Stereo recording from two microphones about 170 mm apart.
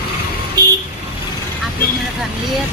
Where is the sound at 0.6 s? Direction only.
25° right (ahead or behind).